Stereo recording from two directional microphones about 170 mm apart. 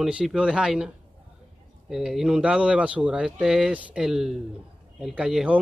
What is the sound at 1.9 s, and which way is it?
Speech, centre (ahead or behind).